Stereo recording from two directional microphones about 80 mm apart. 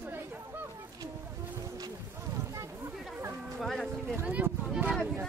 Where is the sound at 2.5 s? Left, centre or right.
Right.